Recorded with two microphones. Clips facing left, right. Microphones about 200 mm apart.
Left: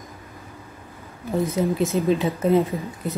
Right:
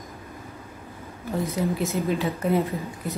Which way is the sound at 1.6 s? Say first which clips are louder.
Left 4 dB; 20° left (ahead or behind).